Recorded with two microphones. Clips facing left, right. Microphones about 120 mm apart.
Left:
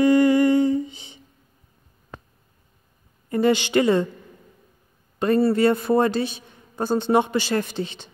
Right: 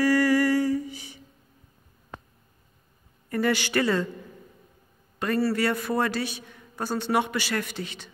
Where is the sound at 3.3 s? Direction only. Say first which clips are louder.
Left 6 dB; 20° left (ahead or behind).